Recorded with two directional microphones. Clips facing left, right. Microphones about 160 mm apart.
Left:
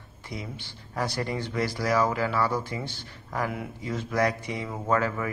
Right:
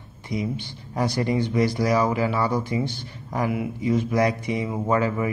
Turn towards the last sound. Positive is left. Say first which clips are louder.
# right 4 dB
turn(degrees=-15)  # may be behind; listen again after turning